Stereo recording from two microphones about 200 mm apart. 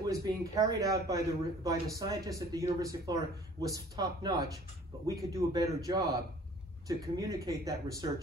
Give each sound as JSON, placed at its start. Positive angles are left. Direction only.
{"t": 0.0, "sound": "a man's voice", "side_deg": -15}